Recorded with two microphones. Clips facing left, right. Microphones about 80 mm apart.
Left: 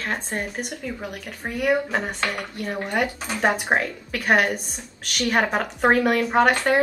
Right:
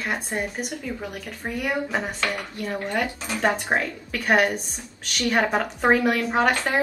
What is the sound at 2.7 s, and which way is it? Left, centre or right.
A woman's voice, centre.